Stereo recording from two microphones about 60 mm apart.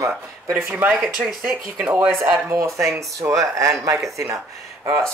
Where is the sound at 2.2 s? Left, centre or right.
Right.